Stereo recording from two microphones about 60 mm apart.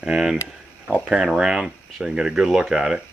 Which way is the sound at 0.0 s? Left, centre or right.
Centre.